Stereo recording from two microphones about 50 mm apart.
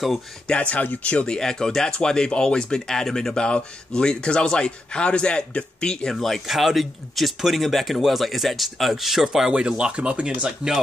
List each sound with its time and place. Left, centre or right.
0.5 s speech: left
1.2 s speech: centre
6.1 s speech: centre
9.5 s speech: centre